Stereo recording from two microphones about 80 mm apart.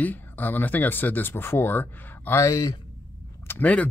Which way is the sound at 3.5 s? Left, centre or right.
Centre.